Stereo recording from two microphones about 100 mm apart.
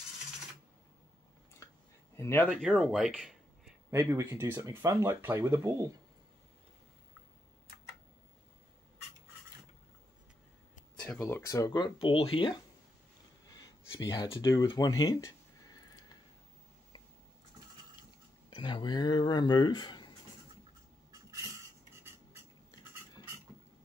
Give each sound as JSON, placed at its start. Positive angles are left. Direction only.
{"t": 1.6, "sound": "a sound", "side_deg": 30}
{"t": 2.1, "sound": "speech", "side_deg": 25}
{"t": 2.7, "sound": "speech", "side_deg": 0}
{"t": 3.9, "sound": "speech", "side_deg": -30}
{"t": 4.9, "sound": "speech", "side_deg": -20}
{"t": 11.4, "sound": "speech", "side_deg": 35}
{"t": 12.0, "sound": "speech", "side_deg": 65}
{"t": 14.0, "sound": "speech", "side_deg": 40}
{"t": 14.6, "sound": "a sound", "side_deg": 45}
{"t": 18.5, "sound": "speech", "side_deg": 50}
{"t": 21.1, "sound": "a sound", "side_deg": -35}